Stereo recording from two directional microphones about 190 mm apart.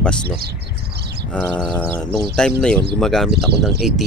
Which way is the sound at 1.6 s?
5° right (ahead or behind).